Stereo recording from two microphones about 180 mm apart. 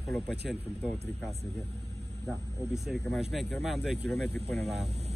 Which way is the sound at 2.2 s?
Centre (ahead or behind).